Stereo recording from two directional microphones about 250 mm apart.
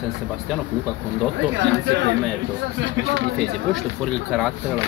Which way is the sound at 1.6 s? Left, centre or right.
Right.